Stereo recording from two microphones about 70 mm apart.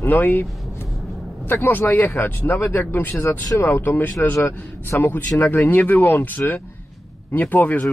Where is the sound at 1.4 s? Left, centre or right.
Left.